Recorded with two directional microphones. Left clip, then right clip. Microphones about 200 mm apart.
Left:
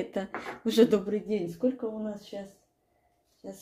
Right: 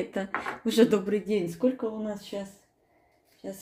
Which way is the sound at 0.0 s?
Centre (ahead or behind).